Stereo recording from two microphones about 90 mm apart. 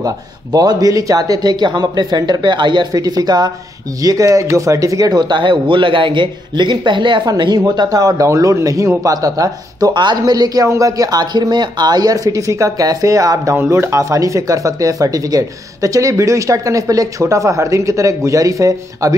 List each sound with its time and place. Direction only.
0.0 s a man's voice: 40° right (ahead or behind)
9.9 s speech: 55° right (ahead or behind)
13.6 s speech: 30° right (ahead or behind)